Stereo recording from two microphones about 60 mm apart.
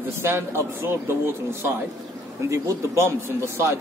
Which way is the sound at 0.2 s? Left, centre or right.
Right.